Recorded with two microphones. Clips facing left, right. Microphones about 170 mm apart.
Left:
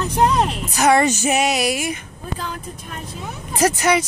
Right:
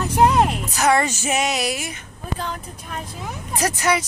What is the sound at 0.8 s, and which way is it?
Speech, 20° left (ahead or behind).